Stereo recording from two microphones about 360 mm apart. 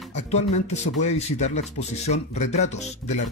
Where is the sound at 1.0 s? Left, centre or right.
Centre.